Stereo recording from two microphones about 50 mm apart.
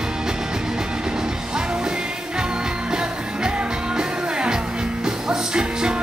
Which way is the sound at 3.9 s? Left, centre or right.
Centre.